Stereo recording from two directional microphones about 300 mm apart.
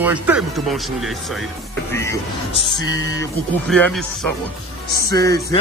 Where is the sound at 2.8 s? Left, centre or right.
Centre.